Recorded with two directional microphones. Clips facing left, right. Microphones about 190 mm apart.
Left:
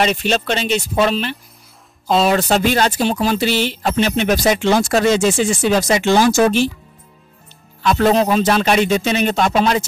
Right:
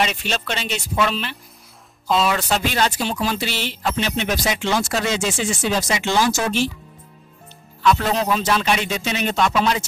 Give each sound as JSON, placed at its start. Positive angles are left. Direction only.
{"t": 0.0, "sound": "speech", "side_deg": 40}
{"t": 7.9, "sound": "speech", "side_deg": 50}